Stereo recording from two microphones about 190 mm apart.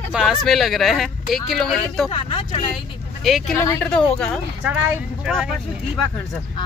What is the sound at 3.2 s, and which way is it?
Speech, centre (ahead or behind).